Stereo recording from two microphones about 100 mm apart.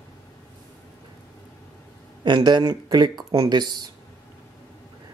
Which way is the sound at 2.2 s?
50° right (ahead or behind).